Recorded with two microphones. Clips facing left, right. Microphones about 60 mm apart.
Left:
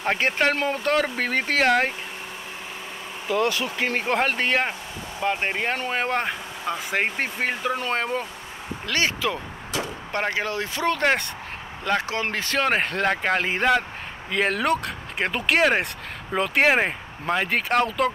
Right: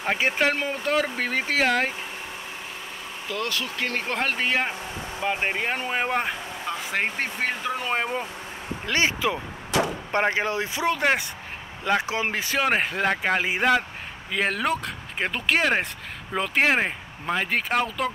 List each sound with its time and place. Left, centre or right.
0.0 s speech: centre
3.3 s speech: left; by 6.2 s centre
6.2 s speech: centre
7.8 s speech: centre
8.8 s speech: right; by 18.1 s centre